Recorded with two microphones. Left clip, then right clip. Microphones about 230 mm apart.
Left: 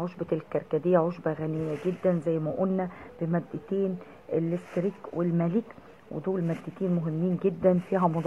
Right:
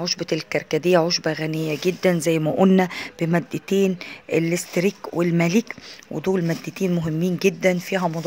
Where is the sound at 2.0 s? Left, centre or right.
Right.